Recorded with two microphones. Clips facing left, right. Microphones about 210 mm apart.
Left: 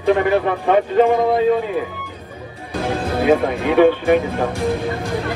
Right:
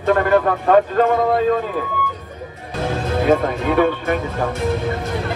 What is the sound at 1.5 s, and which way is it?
Speech, 10° left (ahead or behind).